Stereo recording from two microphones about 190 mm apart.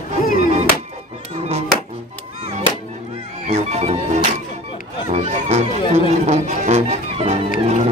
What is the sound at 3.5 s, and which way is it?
Music, 35° right (ahead or behind).